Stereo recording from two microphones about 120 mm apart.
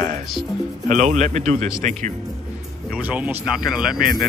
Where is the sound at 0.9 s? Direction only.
90° right.